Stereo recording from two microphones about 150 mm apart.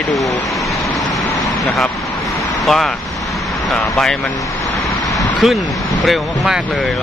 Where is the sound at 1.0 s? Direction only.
Centre (ahead or behind).